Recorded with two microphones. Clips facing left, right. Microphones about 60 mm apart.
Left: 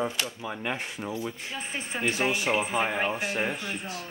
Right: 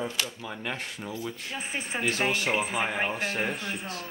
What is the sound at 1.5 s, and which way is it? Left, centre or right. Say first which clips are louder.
Speech: right 1 dB; centre.